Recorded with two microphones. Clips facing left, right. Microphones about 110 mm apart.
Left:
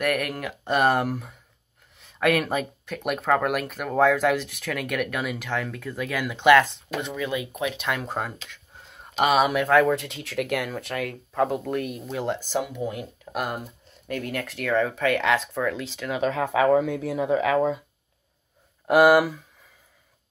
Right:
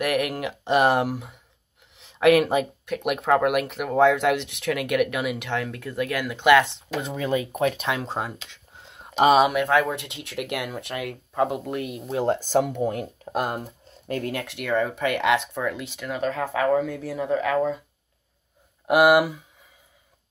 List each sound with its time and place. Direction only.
0.0 s speech: 15° right (ahead or behind)
7.0 s speech: 35° right (ahead or behind)
8.2 s a sound: 20° right (ahead or behind)
9.2 s speech: 30° right (ahead or behind)
9.5 s speech: 10° right (ahead or behind)
9.9 s speech: 70° right (ahead or behind)
10.2 s speech: 15° right (ahead or behind)
12.1 s speech: 30° right (ahead or behind)
12.5 s speech: 45° right (ahead or behind); by 14.5 s 30° right (ahead or behind)
14.6 s speech: 10° right (ahead or behind)
16.1 s speech: 5° left (ahead or behind)
16.8 s speech: centre (ahead or behind)
18.9 s speech: 15° right (ahead or behind)